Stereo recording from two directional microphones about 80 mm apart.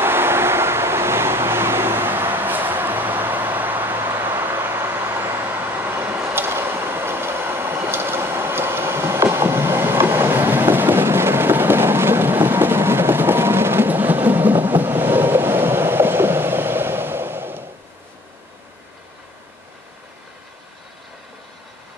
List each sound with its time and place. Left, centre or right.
0.0 s vehicle: right